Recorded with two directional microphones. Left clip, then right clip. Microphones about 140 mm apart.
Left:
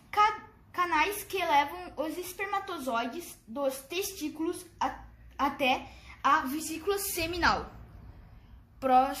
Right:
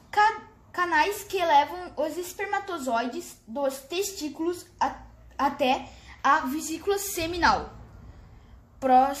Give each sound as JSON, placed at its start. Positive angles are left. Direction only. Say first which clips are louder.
{"t": 0.1, "sound": "a child's voice", "louder": "right 4 dB", "side_deg": -45}
{"t": 8.7, "sound": "a woman's voice", "louder": "right 4 dB", "side_deg": -35}